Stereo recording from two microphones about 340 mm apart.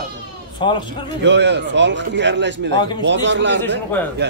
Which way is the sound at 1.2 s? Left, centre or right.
Right.